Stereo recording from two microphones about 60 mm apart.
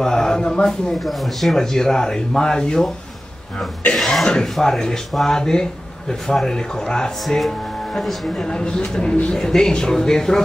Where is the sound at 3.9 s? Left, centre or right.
Centre.